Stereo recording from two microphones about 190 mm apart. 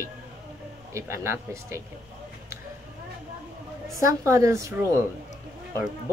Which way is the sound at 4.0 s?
15° right (ahead or behind).